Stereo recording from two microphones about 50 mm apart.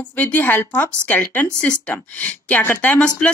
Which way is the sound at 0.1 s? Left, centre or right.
Left.